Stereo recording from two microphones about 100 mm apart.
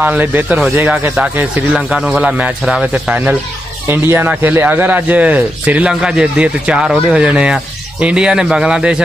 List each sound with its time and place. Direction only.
0.0 s a man's voice: 20° right (ahead or behind)
1.8 s a man's voice: 5° right (ahead or behind)
3.8 s a man's voice: 20° right (ahead or behind)